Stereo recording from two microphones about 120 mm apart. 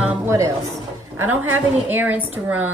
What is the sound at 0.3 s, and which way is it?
A woman's voice, 25° right (ahead or behind).